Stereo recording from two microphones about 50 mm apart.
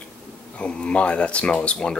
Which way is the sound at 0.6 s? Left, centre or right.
Centre.